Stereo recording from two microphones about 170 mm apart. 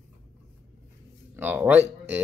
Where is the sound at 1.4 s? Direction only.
10° right (ahead or behind).